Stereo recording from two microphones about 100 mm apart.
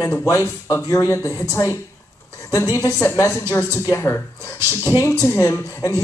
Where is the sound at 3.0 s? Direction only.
30° left (ahead or behind).